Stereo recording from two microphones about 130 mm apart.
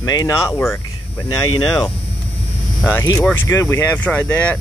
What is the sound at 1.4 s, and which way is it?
Speech, 30° left (ahead or behind).